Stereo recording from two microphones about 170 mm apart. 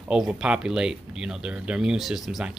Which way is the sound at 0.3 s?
5° right (ahead or behind).